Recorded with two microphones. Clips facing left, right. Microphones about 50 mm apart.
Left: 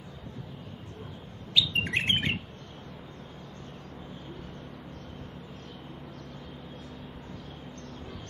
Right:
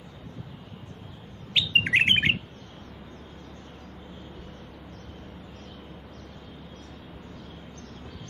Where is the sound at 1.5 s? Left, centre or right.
Right.